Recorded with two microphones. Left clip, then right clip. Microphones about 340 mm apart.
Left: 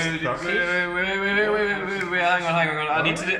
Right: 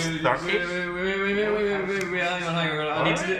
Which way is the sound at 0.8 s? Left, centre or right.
Left.